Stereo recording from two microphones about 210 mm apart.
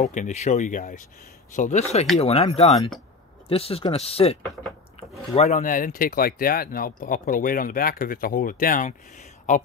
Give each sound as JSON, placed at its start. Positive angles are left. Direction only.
{"t": 0.0, "sound": "speech", "side_deg": 35}